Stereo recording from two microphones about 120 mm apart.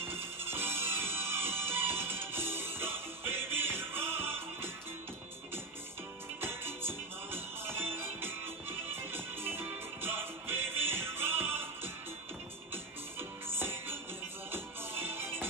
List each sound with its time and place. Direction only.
0.1 s music: 20° right (ahead or behind)
6.4 s music: 20° right (ahead or behind)
13.5 s music: 20° right (ahead or behind)